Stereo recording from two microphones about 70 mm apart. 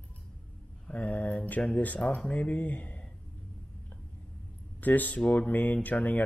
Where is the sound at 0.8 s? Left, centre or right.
Centre.